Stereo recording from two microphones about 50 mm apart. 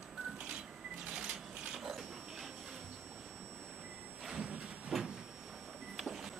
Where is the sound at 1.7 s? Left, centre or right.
Centre.